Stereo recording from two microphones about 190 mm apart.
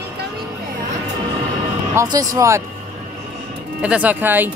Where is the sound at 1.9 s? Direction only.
20° right (ahead or behind).